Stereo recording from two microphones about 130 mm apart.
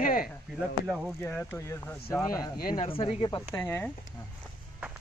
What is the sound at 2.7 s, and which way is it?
Speech, 45° left (ahead or behind).